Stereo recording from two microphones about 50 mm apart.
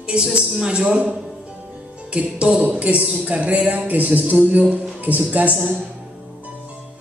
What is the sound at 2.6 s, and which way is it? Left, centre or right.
Speech, right.